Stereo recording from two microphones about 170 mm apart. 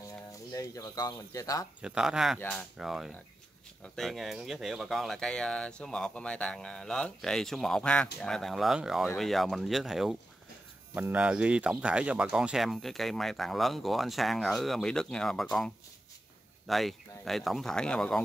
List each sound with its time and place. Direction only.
0.3 s speech: 20° left (ahead or behind)
1.8 s speech: 5° right (ahead or behind)
16.6 s speech: centre (ahead or behind)